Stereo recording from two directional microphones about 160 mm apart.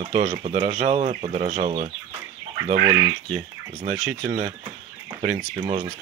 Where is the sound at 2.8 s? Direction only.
25° right (ahead or behind).